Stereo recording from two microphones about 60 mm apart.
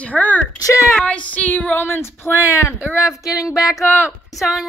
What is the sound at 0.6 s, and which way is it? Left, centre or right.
Speech, left.